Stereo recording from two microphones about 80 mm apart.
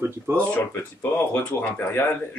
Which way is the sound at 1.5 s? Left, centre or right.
Left.